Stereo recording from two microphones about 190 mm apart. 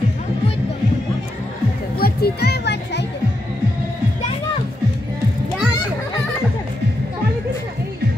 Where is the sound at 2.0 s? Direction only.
55° left (ahead or behind).